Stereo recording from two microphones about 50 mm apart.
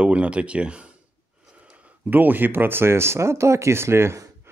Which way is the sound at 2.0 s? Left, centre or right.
Right.